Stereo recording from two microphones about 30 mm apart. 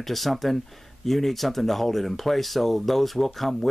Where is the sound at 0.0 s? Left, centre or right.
Centre.